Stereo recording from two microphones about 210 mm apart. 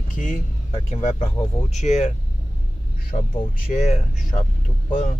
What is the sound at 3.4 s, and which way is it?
Speech, 30° left (ahead or behind).